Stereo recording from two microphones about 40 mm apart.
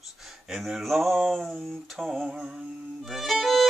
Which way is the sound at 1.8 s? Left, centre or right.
Centre.